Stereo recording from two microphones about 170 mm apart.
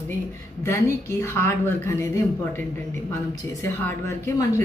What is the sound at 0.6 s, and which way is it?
A man's voice, 15° left (ahead or behind).